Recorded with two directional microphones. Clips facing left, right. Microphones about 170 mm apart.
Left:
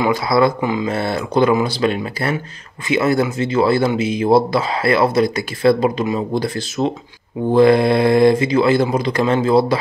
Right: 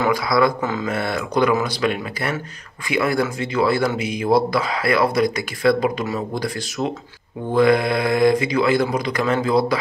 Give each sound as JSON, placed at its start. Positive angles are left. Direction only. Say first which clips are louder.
{"t": 0.1, "sound": "speech", "louder": "left 3 dB", "side_deg": 25}
{"t": 0.6, "sound": "speech", "louder": "left 4 dB", "side_deg": 15}
{"t": 0.8, "sound": "speech", "louder": "left 3 dB", "side_deg": 30}